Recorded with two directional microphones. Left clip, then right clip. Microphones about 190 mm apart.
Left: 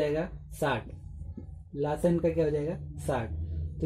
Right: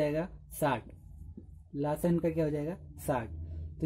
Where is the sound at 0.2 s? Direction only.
25° right (ahead or behind).